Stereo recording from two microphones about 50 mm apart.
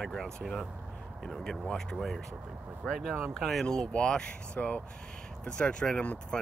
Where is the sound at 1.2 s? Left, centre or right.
Centre.